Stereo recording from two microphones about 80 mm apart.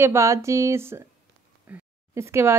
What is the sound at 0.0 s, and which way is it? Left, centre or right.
Speech, right.